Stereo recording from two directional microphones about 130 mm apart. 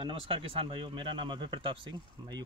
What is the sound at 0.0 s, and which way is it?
Speech, 45° right (ahead or behind).